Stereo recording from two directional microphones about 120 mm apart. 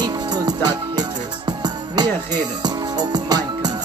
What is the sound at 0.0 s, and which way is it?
Music, 35° right (ahead or behind).